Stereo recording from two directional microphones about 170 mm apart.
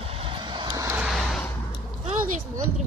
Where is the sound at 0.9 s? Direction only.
Centre (ahead or behind).